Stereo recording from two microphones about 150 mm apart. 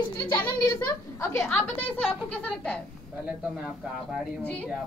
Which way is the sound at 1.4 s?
15° left (ahead or behind).